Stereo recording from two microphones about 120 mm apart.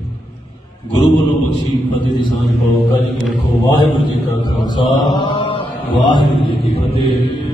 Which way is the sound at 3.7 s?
40° left (ahead or behind).